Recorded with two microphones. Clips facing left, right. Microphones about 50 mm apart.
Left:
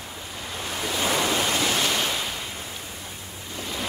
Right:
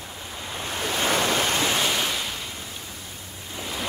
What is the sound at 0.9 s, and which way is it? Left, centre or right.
Waves, right.